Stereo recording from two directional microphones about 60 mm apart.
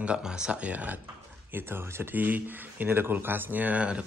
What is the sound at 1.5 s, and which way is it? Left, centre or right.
Speech, right.